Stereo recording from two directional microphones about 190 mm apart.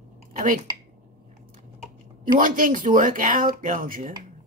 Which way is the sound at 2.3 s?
45° right (ahead or behind).